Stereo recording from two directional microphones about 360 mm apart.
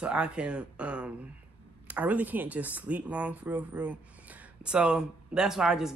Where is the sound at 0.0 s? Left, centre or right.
Centre.